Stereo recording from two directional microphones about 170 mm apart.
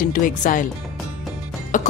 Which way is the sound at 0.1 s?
50° left (ahead or behind).